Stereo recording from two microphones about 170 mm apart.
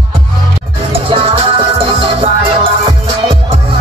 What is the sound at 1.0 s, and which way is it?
Music, 30° right (ahead or behind).